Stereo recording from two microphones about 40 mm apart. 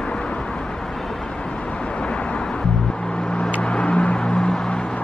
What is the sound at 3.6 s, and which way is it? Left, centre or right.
Vehicle, left.